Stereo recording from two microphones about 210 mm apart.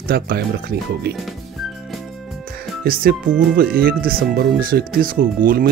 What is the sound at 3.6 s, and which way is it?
Speech, 45° right (ahead or behind).